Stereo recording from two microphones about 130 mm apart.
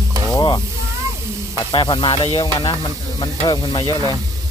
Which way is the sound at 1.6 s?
35° left (ahead or behind).